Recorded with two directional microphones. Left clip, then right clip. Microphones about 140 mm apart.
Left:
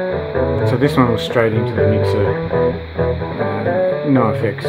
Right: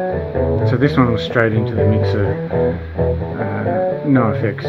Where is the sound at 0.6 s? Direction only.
15° left (ahead or behind).